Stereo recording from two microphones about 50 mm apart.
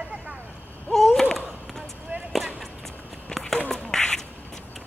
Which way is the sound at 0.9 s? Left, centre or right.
Centre.